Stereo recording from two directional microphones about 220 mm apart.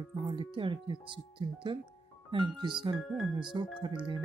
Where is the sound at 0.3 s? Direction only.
25° right (ahead or behind).